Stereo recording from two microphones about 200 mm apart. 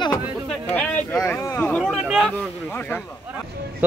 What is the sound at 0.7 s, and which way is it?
Speech, 10° left (ahead or behind).